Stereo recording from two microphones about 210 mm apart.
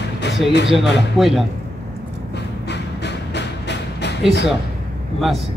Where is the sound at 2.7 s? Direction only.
55° left (ahead or behind).